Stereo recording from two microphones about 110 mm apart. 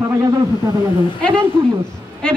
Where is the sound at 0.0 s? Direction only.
30° right (ahead or behind).